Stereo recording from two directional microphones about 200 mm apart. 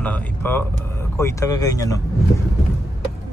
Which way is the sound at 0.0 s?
10° left (ahead or behind).